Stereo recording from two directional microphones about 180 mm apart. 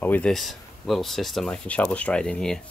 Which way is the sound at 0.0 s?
10° left (ahead or behind).